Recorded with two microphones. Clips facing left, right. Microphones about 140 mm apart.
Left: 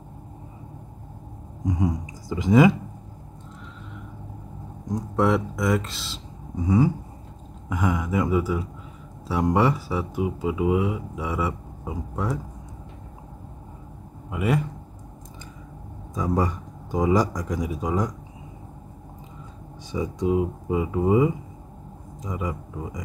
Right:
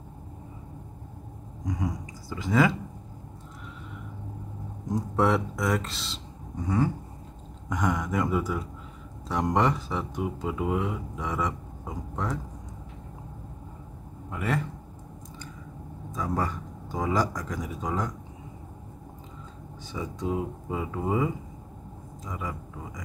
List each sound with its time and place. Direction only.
1.7 s speech: 20° left (ahead or behind)
4.9 s speech: centre (ahead or behind)
14.3 s a man's voice: 10° left (ahead or behind)
16.2 s speech: 15° left (ahead or behind)
19.9 s speech: 15° left (ahead or behind)